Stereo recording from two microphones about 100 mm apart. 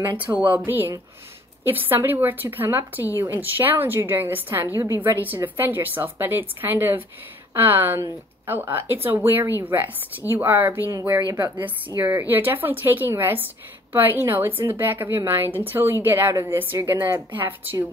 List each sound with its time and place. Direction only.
0.2 s speech: 15° right (ahead or behind)
10.9 s speech: 35° right (ahead or behind)
12.0 s speech: 25° right (ahead or behind)